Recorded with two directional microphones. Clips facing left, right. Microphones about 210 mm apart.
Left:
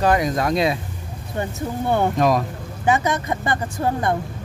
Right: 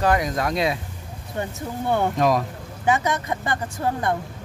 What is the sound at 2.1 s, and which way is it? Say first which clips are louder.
Speech: left 1 dB; 45° left (ahead or behind).